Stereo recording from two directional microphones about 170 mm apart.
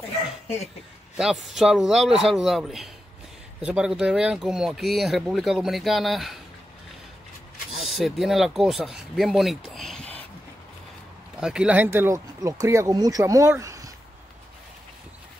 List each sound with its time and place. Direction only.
1.1 s speech: 5° right (ahead or behind)
7.7 s speech: centre (ahead or behind)
11.3 s speech: 5° right (ahead or behind)